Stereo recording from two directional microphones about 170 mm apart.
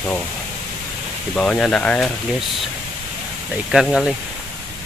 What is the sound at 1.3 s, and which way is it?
Speech, 5° left (ahead or behind).